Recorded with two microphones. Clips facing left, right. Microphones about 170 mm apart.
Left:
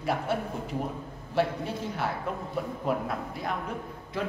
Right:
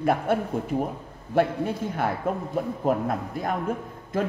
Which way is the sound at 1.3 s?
50° right (ahead or behind).